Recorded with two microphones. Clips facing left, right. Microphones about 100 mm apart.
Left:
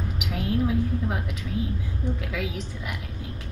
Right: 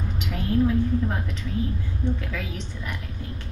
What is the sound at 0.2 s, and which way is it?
A woman's voice, 10° left (ahead or behind).